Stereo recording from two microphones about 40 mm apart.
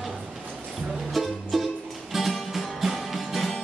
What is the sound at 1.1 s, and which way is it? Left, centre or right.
Music, centre.